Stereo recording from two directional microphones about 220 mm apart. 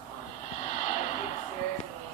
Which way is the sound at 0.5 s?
30° left (ahead or behind).